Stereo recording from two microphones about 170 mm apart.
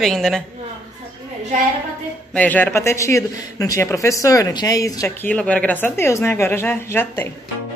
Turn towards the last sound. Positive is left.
turn(degrees=10)  # may be behind; listen again after turning